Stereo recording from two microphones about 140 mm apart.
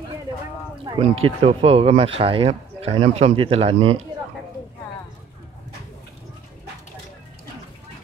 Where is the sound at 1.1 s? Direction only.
45° right (ahead or behind).